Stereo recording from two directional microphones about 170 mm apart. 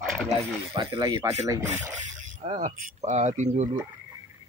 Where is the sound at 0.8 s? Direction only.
25° right (ahead or behind).